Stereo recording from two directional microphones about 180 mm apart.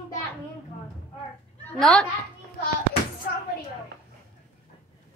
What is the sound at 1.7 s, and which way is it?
Speech, centre (ahead or behind).